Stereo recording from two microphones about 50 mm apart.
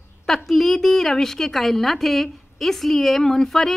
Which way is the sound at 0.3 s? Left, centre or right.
Centre.